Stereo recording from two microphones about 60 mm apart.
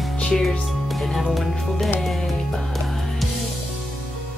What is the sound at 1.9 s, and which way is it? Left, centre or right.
Music, centre.